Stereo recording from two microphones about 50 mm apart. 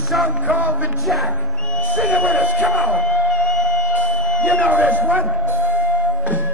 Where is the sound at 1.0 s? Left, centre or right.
Centre.